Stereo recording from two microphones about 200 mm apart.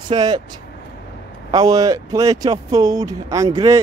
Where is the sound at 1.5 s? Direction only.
20° right (ahead or behind).